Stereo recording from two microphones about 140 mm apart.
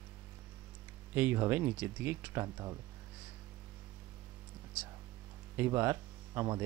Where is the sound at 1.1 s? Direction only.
15° right (ahead or behind).